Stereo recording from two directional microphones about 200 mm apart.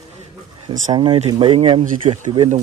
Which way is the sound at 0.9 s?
25° right (ahead or behind).